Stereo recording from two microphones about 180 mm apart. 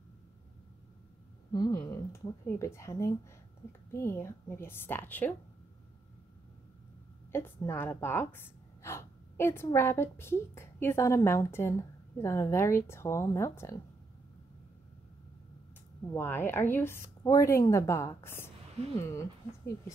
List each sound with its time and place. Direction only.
1.5 s a woman's voice: 25° left (ahead or behind)
7.3 s a woman's voice: 10° left (ahead or behind)
16.1 s a woman's voice: 10° left (ahead or behind)